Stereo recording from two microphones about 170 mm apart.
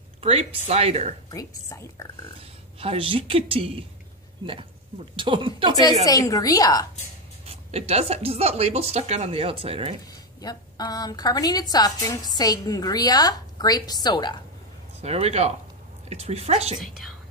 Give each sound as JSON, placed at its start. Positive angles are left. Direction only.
{"t": 0.2, "sound": "speech", "side_deg": -35}
{"t": 1.3, "sound": "a woman's voice", "side_deg": 20}
{"t": 2.8, "sound": "speech", "side_deg": -35}
{"t": 5.1, "sound": "speech", "side_deg": -30}
{"t": 6.0, "sound": "a woman's voice", "side_deg": 20}
{"t": 7.4, "sound": "speech", "side_deg": -35}
{"t": 10.4, "sound": "a woman's voice", "side_deg": 20}
{"t": 15.0, "sound": "speech", "side_deg": -40}